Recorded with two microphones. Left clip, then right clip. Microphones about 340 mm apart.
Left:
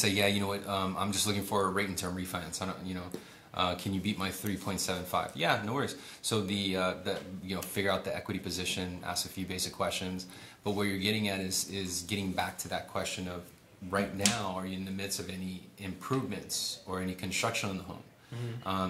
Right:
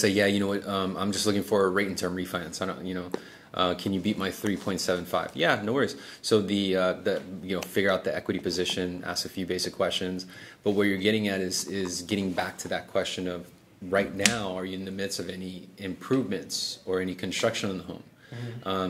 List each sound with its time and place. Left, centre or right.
0.0 s speech: left
15.0 s speech: left
18.7 s speech: left